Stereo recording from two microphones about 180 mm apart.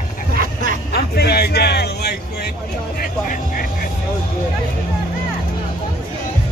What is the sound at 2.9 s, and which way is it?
Speech, 55° left (ahead or behind).